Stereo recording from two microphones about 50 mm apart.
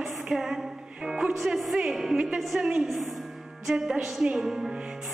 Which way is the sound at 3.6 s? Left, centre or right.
Centre.